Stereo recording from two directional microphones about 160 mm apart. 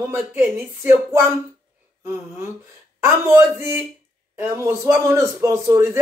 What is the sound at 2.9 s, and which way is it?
A man's voice, 15° right (ahead or behind).